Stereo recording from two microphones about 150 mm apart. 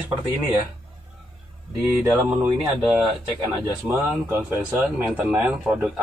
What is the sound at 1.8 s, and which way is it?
Speech, 5° right (ahead or behind).